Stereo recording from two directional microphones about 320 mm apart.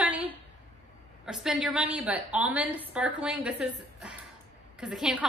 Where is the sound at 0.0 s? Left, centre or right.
Centre.